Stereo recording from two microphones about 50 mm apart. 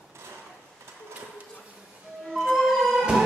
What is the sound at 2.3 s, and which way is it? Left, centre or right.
Music, centre.